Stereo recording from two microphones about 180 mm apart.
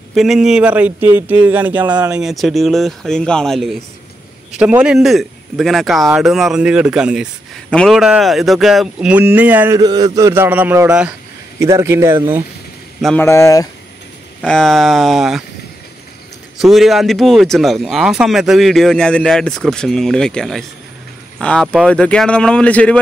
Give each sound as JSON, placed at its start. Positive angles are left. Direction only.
{"t": 0.1, "sound": "speech", "side_deg": 0}
{"t": 9.8, "sound": "a sound", "side_deg": -20}
{"t": 13.0, "sound": "speech", "side_deg": 10}
{"t": 14.4, "sound": "speech", "side_deg": 5}
{"t": 16.5, "sound": "speech", "side_deg": 0}